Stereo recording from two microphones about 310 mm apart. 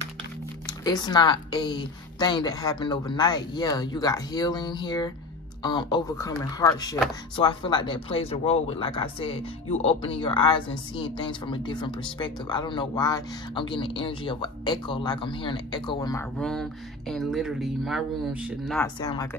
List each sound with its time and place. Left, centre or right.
0.7 s speech: centre
18.9 s speech: centre